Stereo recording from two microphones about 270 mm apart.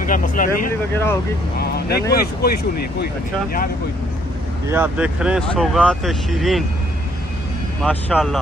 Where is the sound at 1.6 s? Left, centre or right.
Left.